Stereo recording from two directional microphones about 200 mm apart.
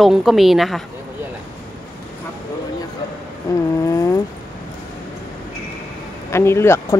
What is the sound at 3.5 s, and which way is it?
Speech, 15° left (ahead or behind).